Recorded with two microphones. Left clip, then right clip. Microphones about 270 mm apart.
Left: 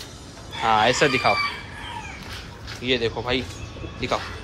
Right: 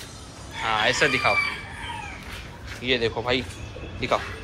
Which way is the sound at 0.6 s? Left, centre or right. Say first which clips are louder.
Left 3 dB; centre.